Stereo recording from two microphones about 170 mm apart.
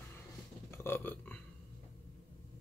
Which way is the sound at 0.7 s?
15° left (ahead or behind).